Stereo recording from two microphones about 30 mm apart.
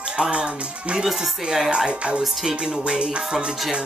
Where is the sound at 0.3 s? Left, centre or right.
Right.